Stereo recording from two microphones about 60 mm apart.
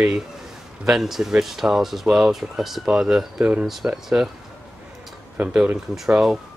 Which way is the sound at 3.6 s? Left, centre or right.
Centre.